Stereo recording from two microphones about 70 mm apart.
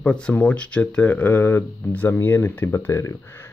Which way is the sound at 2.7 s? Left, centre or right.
Left.